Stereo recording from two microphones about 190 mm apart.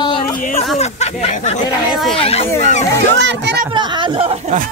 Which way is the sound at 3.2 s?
70° right (ahead or behind).